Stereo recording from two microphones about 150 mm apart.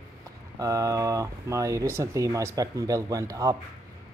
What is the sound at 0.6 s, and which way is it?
Speech, 20° right (ahead or behind).